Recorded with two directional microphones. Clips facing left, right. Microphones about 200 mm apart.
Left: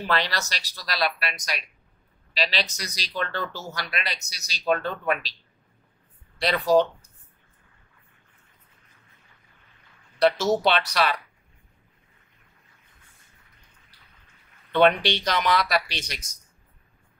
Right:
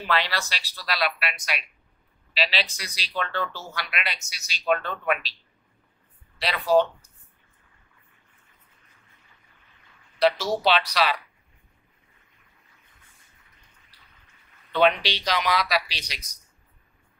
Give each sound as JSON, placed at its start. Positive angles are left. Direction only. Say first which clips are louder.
{"t": 0.0, "sound": "speech", "louder": "even", "side_deg": 45}
{"t": 6.3, "sound": "speech", "louder": "left 1 dB", "side_deg": 45}
{"t": 10.2, "sound": "speech", "louder": "left 1 dB", "side_deg": 50}
{"t": 14.7, "sound": "speech", "louder": "left 2 dB", "side_deg": 50}